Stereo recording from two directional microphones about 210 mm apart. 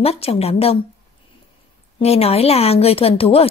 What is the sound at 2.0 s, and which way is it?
A woman's voice, 30° left (ahead or behind).